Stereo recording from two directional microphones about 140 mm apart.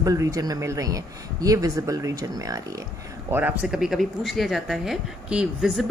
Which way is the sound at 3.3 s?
15° right (ahead or behind).